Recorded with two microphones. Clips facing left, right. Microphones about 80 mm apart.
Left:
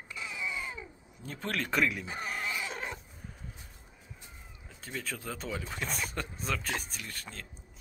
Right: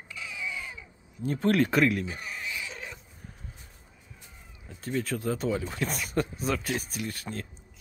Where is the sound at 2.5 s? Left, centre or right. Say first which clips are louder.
Left 2 dB; left.